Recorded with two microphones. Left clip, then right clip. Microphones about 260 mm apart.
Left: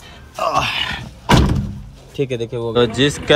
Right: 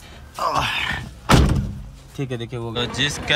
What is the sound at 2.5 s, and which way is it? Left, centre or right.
Speech, centre.